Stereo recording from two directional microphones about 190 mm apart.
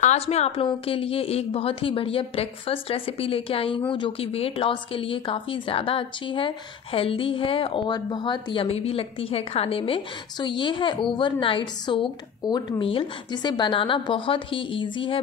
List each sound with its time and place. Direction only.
0.0 s speech: 35° left (ahead or behind)